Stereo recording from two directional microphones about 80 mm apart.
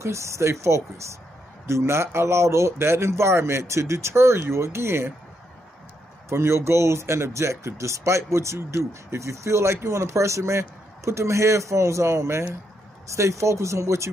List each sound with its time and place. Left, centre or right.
0.0 s speech: right
6.2 s speech: right